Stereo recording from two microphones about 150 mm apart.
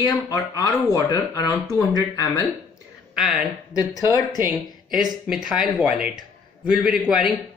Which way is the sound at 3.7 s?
25° left (ahead or behind).